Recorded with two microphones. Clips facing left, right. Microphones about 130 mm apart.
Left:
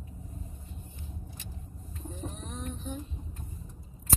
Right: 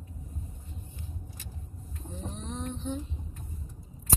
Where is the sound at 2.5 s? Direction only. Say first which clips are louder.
Right 7 dB; 25° right (ahead or behind).